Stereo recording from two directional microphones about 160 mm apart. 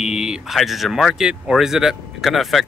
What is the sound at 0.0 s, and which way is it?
Speech, 5° right (ahead or behind).